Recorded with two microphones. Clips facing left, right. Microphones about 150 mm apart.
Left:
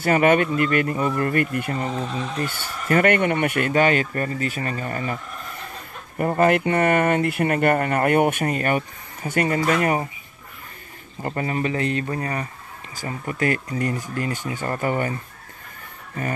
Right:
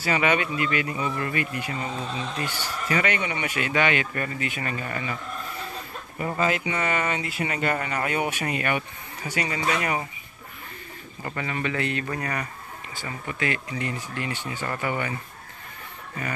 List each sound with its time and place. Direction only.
0.0 s speech: 50° left (ahead or behind)
6.1 s speech: 50° left (ahead or behind)
11.2 s speech: 40° left (ahead or behind)
12.9 s speech: 40° left (ahead or behind)